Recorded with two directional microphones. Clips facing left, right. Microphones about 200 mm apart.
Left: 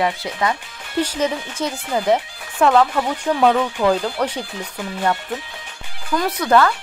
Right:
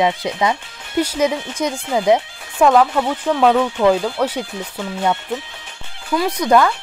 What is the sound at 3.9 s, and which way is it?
Speech, 10° right (ahead or behind).